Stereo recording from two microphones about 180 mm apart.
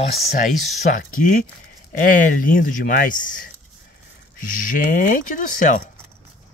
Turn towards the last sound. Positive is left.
turn(degrees=45)  # may be behind; listen again after turning